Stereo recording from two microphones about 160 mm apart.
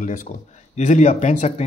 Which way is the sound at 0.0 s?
55° left (ahead or behind).